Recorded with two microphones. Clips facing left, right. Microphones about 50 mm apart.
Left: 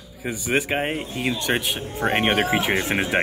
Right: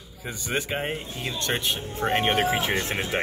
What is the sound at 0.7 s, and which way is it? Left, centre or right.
Speech, left.